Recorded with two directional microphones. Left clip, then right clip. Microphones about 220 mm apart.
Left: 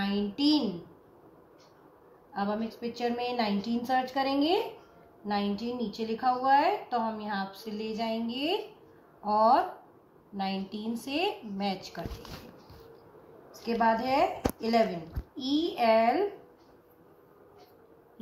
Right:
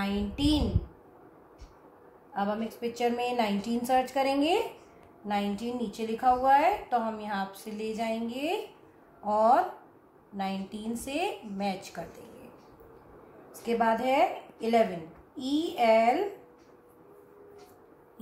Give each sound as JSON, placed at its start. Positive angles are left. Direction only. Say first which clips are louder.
{"t": 0.0, "sound": "a woman's voice", "louder": "left 1 dB", "side_deg": -30}
{"t": 2.3, "sound": "a woman's voice", "louder": "right 1 dB", "side_deg": -35}
{"t": 10.9, "sound": "a woman's voice", "louder": "left 1 dB", "side_deg": -30}
{"t": 13.5, "sound": "a woman's voice", "louder": "even", "side_deg": -30}